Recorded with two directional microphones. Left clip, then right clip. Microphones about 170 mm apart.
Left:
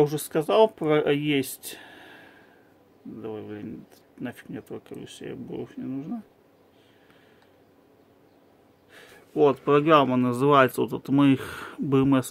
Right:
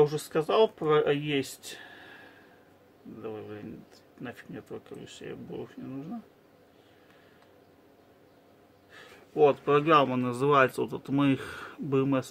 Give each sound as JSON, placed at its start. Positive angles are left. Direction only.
{"t": 0.0, "sound": "speech", "side_deg": 45}
{"t": 8.9, "sound": "speech", "side_deg": 45}